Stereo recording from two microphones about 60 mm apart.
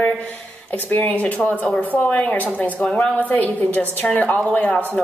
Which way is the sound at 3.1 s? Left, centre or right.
Left.